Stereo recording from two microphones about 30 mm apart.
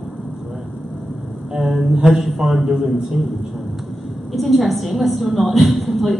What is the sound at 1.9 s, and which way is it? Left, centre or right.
A woman's voice, centre.